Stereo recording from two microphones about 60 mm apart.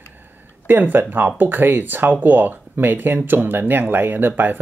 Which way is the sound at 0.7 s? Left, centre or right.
Right.